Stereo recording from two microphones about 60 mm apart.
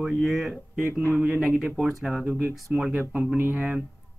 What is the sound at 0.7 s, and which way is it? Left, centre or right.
Speech, right.